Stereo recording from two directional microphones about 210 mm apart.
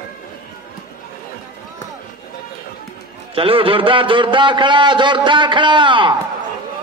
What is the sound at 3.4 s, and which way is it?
A man's voice, 25° right (ahead or behind).